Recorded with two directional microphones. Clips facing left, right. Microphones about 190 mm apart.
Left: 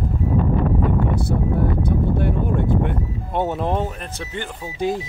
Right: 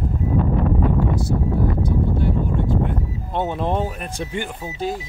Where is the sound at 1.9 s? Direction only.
60° left (ahead or behind).